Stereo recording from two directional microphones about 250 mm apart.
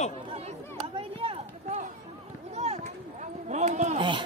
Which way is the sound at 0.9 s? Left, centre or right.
Right.